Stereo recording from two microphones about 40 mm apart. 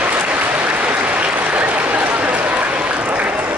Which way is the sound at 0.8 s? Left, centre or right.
Right.